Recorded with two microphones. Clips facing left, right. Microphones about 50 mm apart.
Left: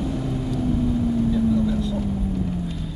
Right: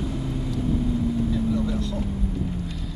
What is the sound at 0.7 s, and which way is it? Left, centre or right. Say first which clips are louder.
Vehicle: left 3 dB; left.